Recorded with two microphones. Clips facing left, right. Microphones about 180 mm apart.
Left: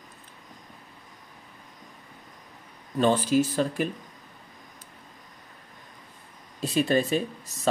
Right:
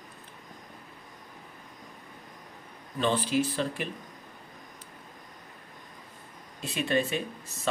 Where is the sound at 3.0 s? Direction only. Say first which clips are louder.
Left 5 dB; 45° left (ahead or behind).